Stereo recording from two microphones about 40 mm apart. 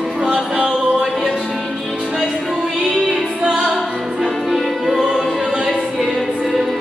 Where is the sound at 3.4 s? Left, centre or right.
Centre.